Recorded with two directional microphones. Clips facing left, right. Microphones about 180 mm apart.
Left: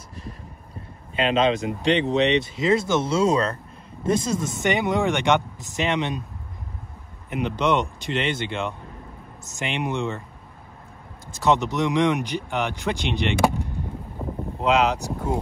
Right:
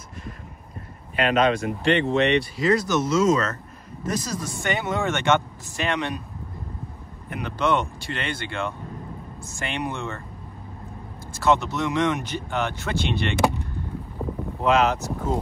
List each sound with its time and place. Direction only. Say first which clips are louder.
1.1 s speech: even; 25° left (ahead or behind)
7.2 s speech: left 2 dB; 20° left (ahead or behind)
11.3 s speech: left 1 dB; 15° left (ahead or behind)
14.6 s speech: even; 15° left (ahead or behind)